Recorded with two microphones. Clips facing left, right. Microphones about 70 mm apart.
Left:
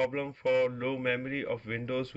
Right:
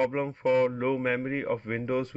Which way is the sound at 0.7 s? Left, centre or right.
Centre.